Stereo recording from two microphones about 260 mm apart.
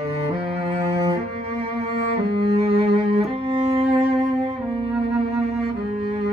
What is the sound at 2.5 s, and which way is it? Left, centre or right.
Music, right.